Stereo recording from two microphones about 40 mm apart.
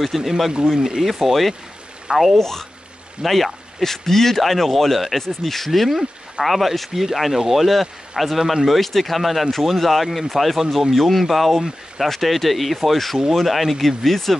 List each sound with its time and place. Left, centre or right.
0.0 s speech: centre
0.7 s speech: centre
1.0 s speech: centre
2.3 s speech: centre